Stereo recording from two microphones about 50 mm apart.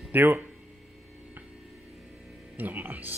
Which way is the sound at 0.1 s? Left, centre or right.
Right.